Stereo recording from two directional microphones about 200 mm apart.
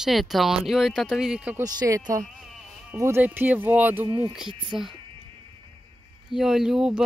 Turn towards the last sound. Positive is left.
turn(degrees=-5)  # may be behind; listen again after turning